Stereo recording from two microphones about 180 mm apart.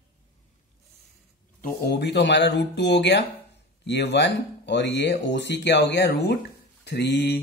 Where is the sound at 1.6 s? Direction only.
65° left (ahead or behind).